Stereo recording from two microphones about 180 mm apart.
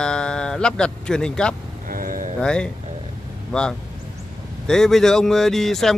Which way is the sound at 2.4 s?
5° left (ahead or behind).